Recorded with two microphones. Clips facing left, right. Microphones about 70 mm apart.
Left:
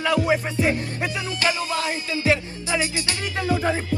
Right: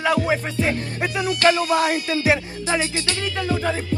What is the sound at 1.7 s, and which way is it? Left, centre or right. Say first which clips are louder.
Speech: right 6 dB; right.